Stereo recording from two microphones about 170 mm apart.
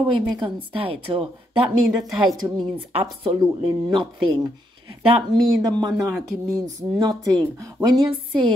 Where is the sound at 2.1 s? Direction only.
Centre (ahead or behind).